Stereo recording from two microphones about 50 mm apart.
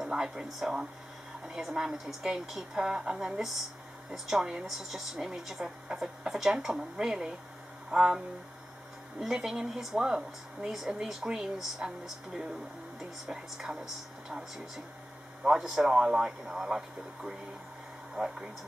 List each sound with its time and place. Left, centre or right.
0.0 s a sound: centre
0.5 s a woman's voice: centre
9.2 s speech: centre
15.4 s a woman's voice: centre
15.7 s a woman's voice: centre